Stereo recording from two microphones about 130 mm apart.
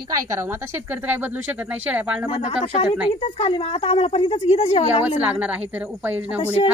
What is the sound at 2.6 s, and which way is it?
A woman's voice, 45° left (ahead or behind).